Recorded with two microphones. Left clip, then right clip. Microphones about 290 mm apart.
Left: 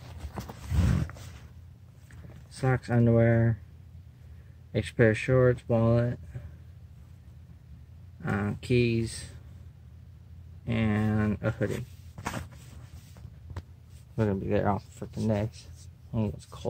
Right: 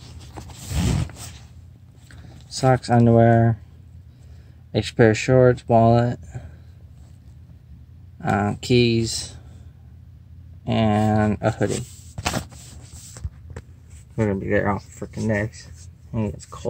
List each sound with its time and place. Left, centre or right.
2.5 s speech: centre
4.7 s speech: centre
8.2 s speech: centre
10.6 s speech: centre
12.2 s a sound: centre
14.1 s speech: centre